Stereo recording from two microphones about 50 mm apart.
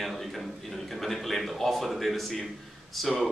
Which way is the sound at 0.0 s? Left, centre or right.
Centre.